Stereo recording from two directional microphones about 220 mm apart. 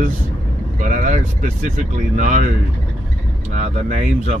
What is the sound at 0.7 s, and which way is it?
Speech, 35° right (ahead or behind).